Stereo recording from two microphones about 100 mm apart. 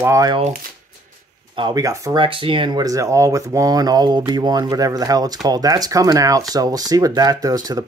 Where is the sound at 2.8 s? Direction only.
35° right (ahead or behind).